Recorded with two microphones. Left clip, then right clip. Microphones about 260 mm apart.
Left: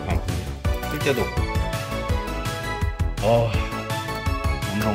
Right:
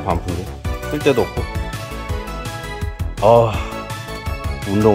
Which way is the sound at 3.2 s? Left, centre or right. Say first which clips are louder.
Right 9 dB; centre.